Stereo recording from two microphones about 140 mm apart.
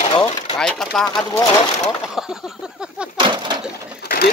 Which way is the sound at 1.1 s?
30° left (ahead or behind).